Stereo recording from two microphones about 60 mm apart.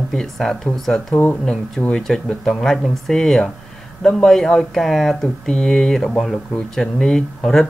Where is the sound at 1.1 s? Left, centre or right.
Left.